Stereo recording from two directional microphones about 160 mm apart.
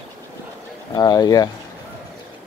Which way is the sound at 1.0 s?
25° left (ahead or behind).